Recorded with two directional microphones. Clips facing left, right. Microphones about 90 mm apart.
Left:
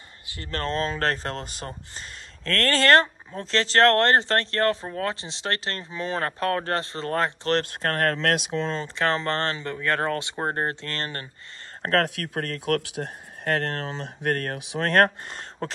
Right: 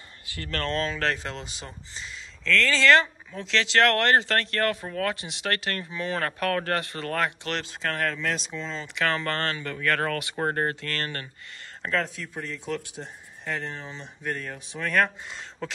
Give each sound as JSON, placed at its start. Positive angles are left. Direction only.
{"t": 0.3, "sound": "speech", "side_deg": 25}
{"t": 7.6, "sound": "speech", "side_deg": 50}
{"t": 8.2, "sound": "speech", "side_deg": 65}
{"t": 8.8, "sound": "speech", "side_deg": 30}
{"t": 11.8, "sound": "speech", "side_deg": 60}
{"t": 14.2, "sound": "speech", "side_deg": 65}
{"t": 15.0, "sound": "speech", "side_deg": 45}